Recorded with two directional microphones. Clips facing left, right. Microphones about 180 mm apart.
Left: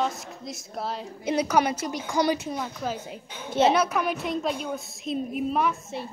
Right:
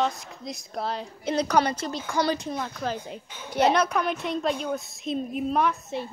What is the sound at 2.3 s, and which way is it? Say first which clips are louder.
Speech: even; 5° left (ahead or behind).